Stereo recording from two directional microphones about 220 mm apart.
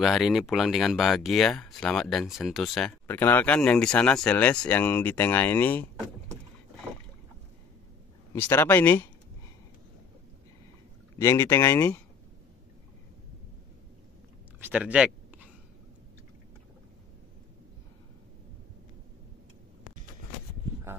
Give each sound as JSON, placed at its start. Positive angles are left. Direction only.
{"t": 0.0, "sound": "speech", "side_deg": 0}
{"t": 8.3, "sound": "speech", "side_deg": 10}
{"t": 11.1, "sound": "speech", "side_deg": 10}
{"t": 14.6, "sound": "speech", "side_deg": -5}